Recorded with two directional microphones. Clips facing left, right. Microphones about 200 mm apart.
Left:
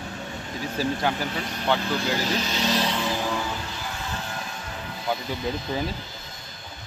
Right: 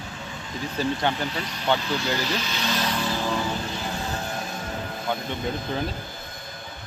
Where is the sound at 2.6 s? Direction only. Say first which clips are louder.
Left 2 dB; 30° left (ahead or behind).